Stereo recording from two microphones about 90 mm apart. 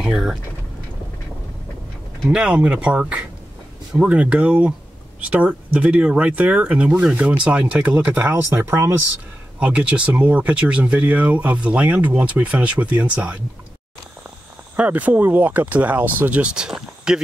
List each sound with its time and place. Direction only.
0.0 s speech: 5° right (ahead or behind)
2.2 s speech: 10° right (ahead or behind)
8.4 s speech: 30° right (ahead or behind)
9.6 s speech: 15° right (ahead or behind)
14.8 s speech: 15° right (ahead or behind)